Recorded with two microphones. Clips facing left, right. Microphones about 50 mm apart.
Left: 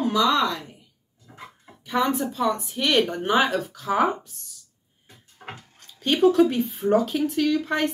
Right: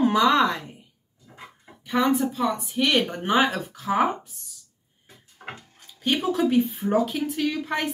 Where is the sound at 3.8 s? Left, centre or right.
Centre.